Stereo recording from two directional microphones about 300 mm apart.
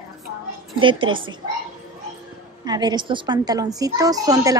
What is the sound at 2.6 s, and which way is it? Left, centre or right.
A child's voice, centre.